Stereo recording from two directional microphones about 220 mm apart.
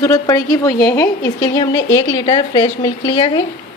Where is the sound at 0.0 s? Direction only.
15° left (ahead or behind).